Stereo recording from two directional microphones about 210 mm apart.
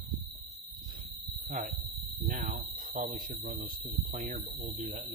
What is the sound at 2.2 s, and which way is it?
Speech, 40° right (ahead or behind).